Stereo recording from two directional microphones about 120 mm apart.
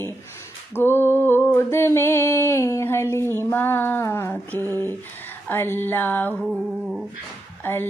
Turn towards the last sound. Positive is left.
turn(degrees=20)  # may be behind; listen again after turning